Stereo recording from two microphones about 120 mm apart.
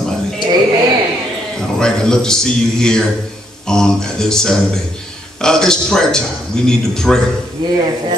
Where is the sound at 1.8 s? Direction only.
5° left (ahead or behind).